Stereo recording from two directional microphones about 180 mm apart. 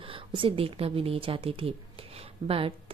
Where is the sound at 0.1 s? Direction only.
30° right (ahead or behind).